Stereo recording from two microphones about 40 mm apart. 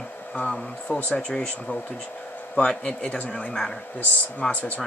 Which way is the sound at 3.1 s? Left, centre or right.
Left.